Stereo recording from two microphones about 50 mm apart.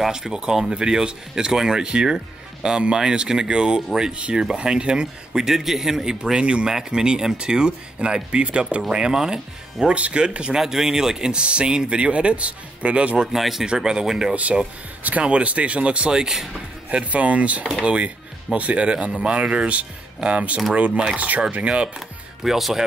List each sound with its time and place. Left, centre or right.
0.0 s a man's voice: centre
9.9 s speech: right
10.6 s speech: centre; by 13.3 s right
13.3 s a man's voice: centre
14.3 s speech: right; by 16.4 s centre
16.9 s speech: right
22.4 s speech: centre